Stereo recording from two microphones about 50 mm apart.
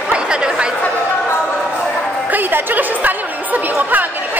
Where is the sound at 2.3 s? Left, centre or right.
Right.